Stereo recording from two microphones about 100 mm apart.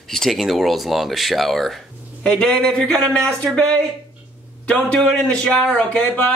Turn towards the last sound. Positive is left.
turn(degrees=10)  # may be behind; listen again after turning